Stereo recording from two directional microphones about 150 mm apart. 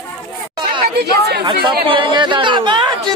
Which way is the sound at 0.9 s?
90° right.